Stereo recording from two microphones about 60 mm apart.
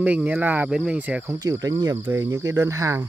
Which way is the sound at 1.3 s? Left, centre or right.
Right.